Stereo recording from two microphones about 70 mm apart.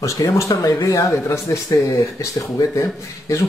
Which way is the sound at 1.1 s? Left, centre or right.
Left.